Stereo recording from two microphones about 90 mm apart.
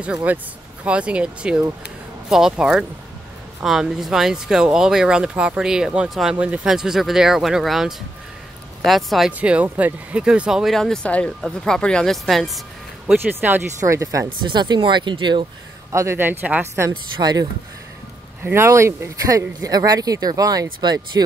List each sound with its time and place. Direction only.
0.0 s speech: 15° right (ahead or behind)
9.4 s speech: 15° right (ahead or behind)
10.6 s speech: 5° left (ahead or behind)
13.0 s a man's voice: 20° right (ahead or behind)
13.7 s speech: 35° right (ahead or behind)
14.4 s speech: 55° right (ahead or behind)
15.9 s a man's voice: 30° right (ahead or behind)
17.2 s speech: 50° right (ahead or behind)
18.4 s speech: 30° right (ahead or behind); by 20.6 s 45° right (ahead or behind)
20.8 s speech: 55° right (ahead or behind)